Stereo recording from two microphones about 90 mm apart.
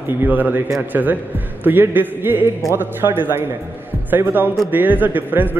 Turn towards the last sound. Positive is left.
turn(degrees=-20)  # may be behind; listen again after turning